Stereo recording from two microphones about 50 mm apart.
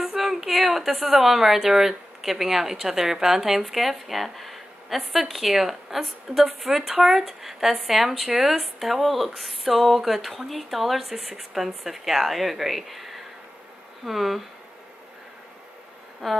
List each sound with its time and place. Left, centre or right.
0.0 s a woman's voice: centre
16.2 s a woman's voice: centre